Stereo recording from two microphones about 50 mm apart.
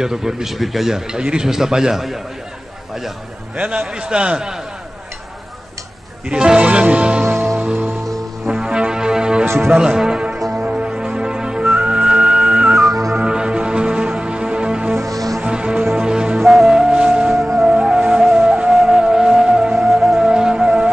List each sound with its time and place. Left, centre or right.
0.0 s a man's voice: centre
3.5 s a man's voice: right
6.2 s music: centre
7.2 s music: right
7.5 s music: right
8.5 s music: centre
9.8 s a man's voice: centre
10.5 s music: right
19.9 s music: centre
20.2 s music: centre